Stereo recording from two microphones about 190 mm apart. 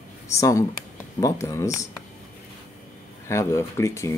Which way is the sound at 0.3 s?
15° left (ahead or behind).